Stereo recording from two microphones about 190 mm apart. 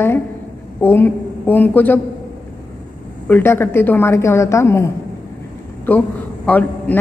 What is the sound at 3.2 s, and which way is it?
A woman's voice, 10° left (ahead or behind).